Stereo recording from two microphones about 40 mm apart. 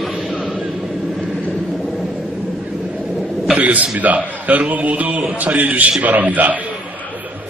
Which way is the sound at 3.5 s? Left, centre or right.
Right.